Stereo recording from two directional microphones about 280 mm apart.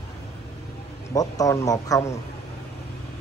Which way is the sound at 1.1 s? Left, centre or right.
Centre.